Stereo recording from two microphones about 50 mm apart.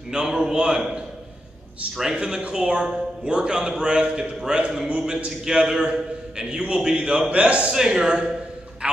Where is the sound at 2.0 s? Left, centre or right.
Centre.